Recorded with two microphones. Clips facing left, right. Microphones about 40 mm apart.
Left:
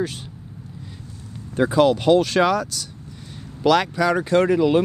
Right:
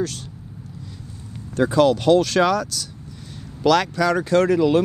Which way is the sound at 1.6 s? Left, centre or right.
Centre.